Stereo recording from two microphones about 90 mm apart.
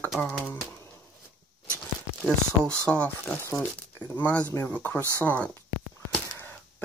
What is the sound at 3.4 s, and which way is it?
Speech, 25° left (ahead or behind).